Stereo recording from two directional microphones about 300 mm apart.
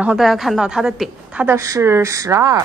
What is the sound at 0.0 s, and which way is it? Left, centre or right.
A woman's voice, centre.